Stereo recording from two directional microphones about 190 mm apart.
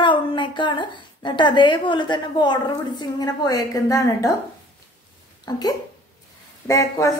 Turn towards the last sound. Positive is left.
turn(degrees=15)  # may be behind; listen again after turning